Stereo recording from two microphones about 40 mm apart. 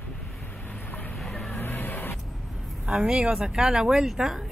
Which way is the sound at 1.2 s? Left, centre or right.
Centre.